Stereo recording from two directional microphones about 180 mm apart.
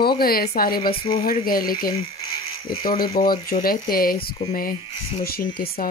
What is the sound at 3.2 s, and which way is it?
Speech, 50° left (ahead or behind).